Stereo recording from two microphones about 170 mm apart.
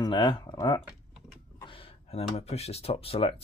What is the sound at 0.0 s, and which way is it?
Speech, 25° left (ahead or behind).